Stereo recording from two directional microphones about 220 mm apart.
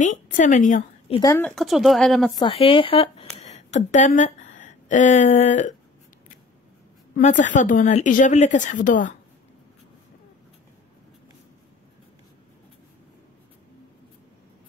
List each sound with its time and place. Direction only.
0.0 s a sound: 35° left (ahead or behind)
1.2 s speech: 10° left (ahead or behind)
1.5 s speech: centre (ahead or behind)
2.3 s a woman's voice: 20° left (ahead or behind)
7.2 s speech: 35° left (ahead or behind)